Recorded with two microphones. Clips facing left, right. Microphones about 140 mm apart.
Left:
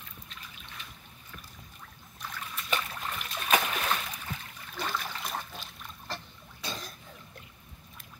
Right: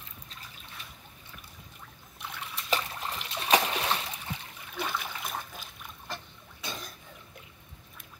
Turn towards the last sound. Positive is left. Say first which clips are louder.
# left 1 dB
turn(degrees=-20)  # may be behind; listen again after turning